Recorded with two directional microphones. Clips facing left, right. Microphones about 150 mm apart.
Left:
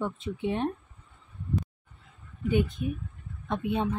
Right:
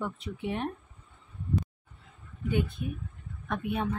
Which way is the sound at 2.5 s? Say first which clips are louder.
Left 4 dB; 20° left (ahead or behind).